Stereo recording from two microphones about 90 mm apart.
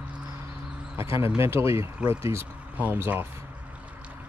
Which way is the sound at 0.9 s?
30° right (ahead or behind).